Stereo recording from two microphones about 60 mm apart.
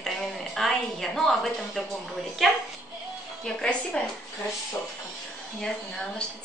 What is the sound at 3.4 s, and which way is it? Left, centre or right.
Speech, centre.